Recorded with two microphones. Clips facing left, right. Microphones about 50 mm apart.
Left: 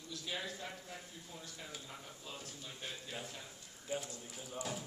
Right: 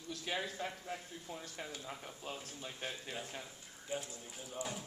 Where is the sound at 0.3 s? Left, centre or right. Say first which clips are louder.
Right 4 dB; right.